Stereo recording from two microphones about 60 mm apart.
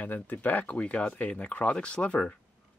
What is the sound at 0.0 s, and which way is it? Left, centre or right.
Speech, left.